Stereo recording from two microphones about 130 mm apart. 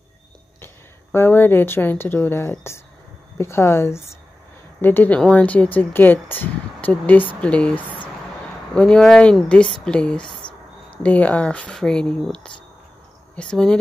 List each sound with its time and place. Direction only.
1.1 s a woman's voice: 15° left (ahead or behind)